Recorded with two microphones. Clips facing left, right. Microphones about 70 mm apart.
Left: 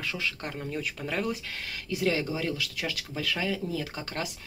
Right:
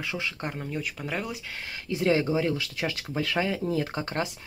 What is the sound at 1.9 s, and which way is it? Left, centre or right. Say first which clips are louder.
Speech: right 4 dB; right.